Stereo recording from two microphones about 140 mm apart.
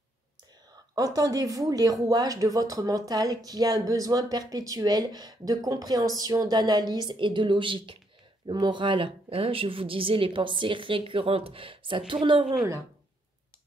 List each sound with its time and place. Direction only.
0.9 s a woman's voice: 25° right (ahead or behind)